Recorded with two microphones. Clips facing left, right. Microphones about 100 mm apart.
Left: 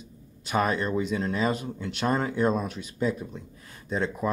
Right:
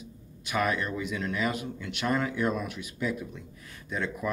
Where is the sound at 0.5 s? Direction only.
30° left (ahead or behind).